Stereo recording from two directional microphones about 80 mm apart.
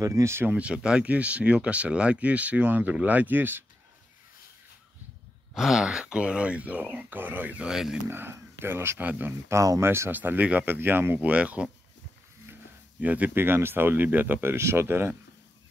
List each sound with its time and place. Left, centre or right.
0.0 s speech: right
0.5 s speech: centre
5.5 s speech: centre; by 7.6 s right
7.6 s speech: centre
8.1 s speech: right
9.5 s speech: right; by 11.7 s centre
13.0 s speech: centre